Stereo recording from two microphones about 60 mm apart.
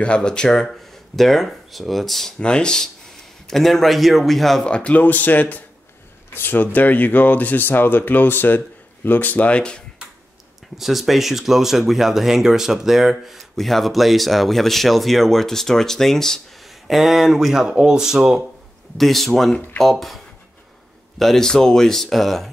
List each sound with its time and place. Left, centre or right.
0.0 s speech: centre
2.3 s speech: centre
4.6 s speech: centre
5.0 s speech: left
10.8 s speech: centre
18.9 s speech: centre
21.2 s speech: centre